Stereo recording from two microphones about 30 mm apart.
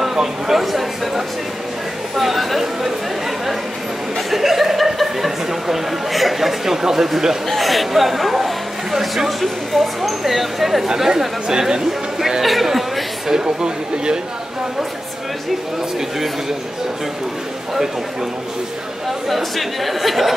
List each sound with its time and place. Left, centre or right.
0.0 s speech: centre
2.1 s speech: centre
4.3 s speech: centre
7.4 s speech: centre
12.4 s speech: centre
13.3 s speech: right
19.2 s speech: centre